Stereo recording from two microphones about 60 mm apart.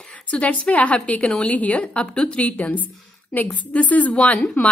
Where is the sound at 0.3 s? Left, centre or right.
Left.